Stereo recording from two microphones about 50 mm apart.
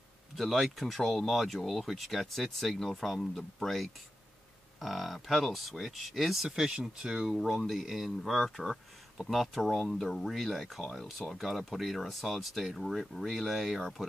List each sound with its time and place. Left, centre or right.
0.4 s speech: centre
6.4 s speech: centre